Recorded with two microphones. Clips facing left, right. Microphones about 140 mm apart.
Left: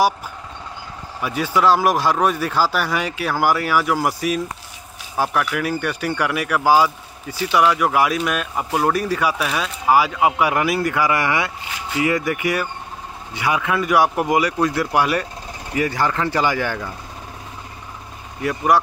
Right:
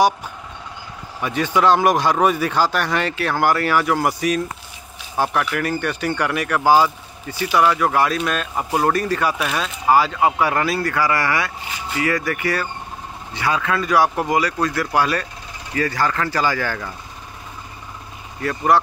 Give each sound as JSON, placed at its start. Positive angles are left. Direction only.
{"t": 1.2, "sound": "speech", "side_deg": 5}
{"t": 18.4, "sound": "speech", "side_deg": 10}